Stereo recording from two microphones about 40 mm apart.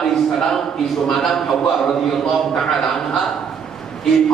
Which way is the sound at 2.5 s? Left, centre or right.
Centre.